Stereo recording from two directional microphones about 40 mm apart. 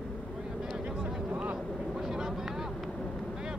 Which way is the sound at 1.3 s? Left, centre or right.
Right.